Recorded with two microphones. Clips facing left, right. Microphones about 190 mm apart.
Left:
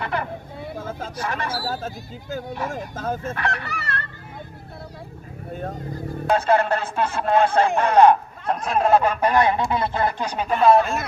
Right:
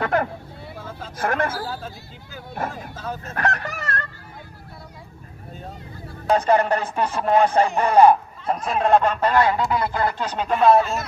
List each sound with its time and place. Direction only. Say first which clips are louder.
0.0 s speech: right 5 dB; 45° right (ahead or behind)
0.7 s a sound: left 4 dB; 45° left (ahead or behind)
1.1 s speech: right 6 dB; 50° right (ahead or behind)
1.7 s speech: left 4 dB; 45° left (ahead or behind)
3.3 s speech: right 2 dB; 45° right (ahead or behind)
5.5 s vehicle: left 7 dB; 55° left (ahead or behind)
6.3 s speech: right 1 dB; 15° right (ahead or behind); by 10.5 s 15° left (ahead or behind)
10.5 s speech: even; centre (ahead or behind)